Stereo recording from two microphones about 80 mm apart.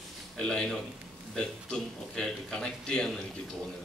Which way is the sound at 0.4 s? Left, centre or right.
Centre.